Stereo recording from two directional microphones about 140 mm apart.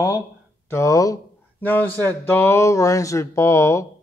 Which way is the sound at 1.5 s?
15° left (ahead or behind).